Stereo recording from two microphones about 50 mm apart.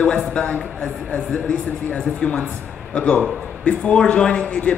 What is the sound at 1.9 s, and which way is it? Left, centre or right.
A man's voice, left.